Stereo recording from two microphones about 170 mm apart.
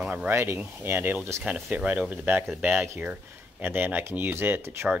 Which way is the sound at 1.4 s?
Centre (ahead or behind).